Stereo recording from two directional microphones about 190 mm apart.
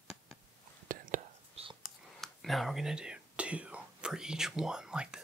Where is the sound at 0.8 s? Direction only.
45° right (ahead or behind).